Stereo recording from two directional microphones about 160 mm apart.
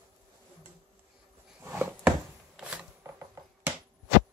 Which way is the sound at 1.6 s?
15° right (ahead or behind).